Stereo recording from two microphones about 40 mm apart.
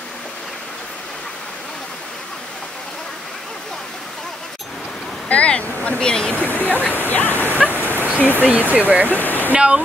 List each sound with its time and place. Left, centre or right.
5.3 s speech: left
5.9 s speech: centre
6.3 s speech: left
7.7 s bow-wow: left
8.4 s speech: right
9.1 s waterfall: left